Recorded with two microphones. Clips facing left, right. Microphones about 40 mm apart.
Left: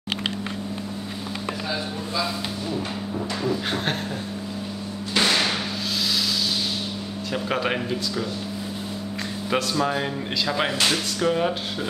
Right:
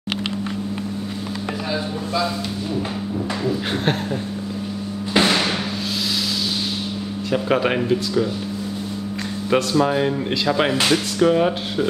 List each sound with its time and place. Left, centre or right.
5.1 s music: centre
7.2 s speech: centre
9.5 s speech: centre